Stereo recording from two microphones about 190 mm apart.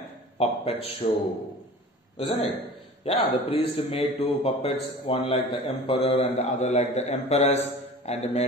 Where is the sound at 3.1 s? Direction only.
30° left (ahead or behind).